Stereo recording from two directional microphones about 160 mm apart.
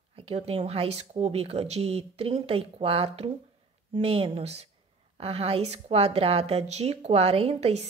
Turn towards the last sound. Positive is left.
turn(degrees=-40)  # may be behind; listen again after turning